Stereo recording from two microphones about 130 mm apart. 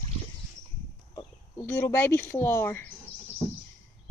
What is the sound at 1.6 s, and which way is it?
Speech, 20° left (ahead or behind).